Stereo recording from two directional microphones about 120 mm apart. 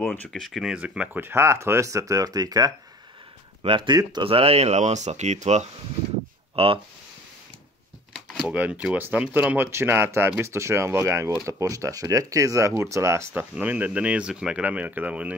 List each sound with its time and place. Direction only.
0.0 s a sound: 15° left (ahead or behind)
0.3 s speech: centre (ahead or behind); by 2.7 s 30° right (ahead or behind)
3.6 s speech: 45° right (ahead or behind); by 5.7 s 70° right (ahead or behind)
6.5 s speech: 50° right (ahead or behind)
8.5 s speech: 10° right (ahead or behind)
13.3 s speech: 15° right (ahead or behind)